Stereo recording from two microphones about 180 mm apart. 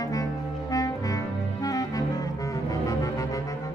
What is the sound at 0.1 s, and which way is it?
Music, 20° left (ahead or behind).